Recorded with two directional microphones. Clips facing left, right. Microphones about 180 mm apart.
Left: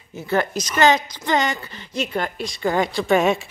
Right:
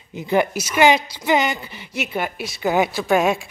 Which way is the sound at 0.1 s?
15° right (ahead or behind).